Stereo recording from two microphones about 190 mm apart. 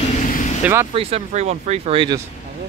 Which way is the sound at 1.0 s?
30° right (ahead or behind).